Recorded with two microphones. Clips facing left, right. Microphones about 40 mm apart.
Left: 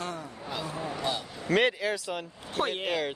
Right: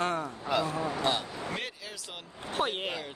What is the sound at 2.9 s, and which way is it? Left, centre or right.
Speech, left.